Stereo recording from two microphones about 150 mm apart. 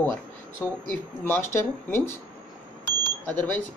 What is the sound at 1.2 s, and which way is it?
Speech, 15° left (ahead or behind).